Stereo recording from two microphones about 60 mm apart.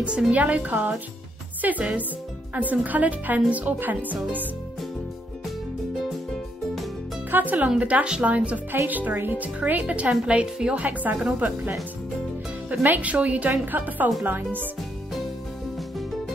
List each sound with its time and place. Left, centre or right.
0.3 s a woman's voice: right
7.2 s a woman's voice: right
10.8 s a woman's voice: right
12.8 s a woman's voice: right